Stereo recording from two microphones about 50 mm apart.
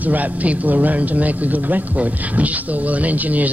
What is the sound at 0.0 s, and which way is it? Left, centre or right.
Speech, right.